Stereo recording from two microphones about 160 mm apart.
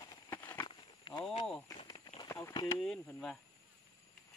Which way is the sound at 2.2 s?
15° left (ahead or behind).